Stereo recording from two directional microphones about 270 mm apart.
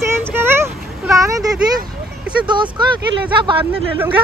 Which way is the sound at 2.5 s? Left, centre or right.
Centre.